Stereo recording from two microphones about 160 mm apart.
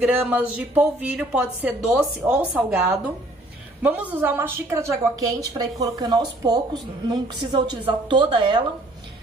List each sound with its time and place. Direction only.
0.0 s a woman's voice: 10° right (ahead or behind); by 8.6 s 30° right (ahead or behind)